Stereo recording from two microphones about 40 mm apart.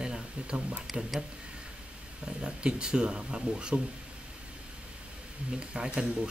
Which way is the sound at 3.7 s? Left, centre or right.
Right.